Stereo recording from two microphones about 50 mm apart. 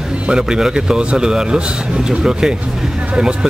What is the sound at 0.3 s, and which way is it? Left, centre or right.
Speech, centre.